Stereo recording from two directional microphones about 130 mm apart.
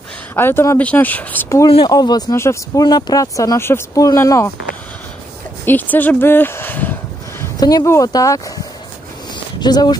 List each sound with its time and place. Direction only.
0.4 s speech: 20° left (ahead or behind)
1.9 s speech: 30° left (ahead or behind)
2.3 s speech: 20° left (ahead or behind)
2.8 s speech: 30° left (ahead or behind)
5.7 s a sound: 15° left (ahead or behind)
7.6 s speech: 25° left (ahead or behind)
9.6 s speech: 30° left (ahead or behind)